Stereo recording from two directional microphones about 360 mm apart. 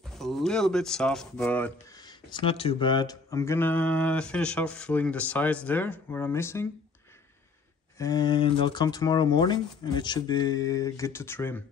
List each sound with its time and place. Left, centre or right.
0.2 s speech: centre
8.0 s speech: centre